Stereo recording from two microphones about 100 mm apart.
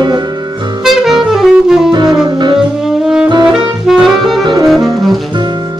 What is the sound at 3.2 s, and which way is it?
Saxophone, 50° right (ahead or behind).